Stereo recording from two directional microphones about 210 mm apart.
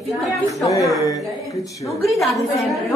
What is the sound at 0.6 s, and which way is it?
Speech, 15° left (ahead or behind).